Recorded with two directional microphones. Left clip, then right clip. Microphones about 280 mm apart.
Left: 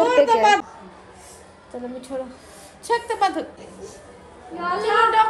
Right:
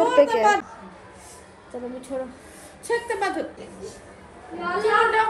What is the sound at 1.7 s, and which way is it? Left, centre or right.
Speech, centre.